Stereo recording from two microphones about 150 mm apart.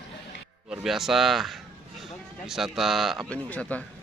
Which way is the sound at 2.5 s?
Centre (ahead or behind).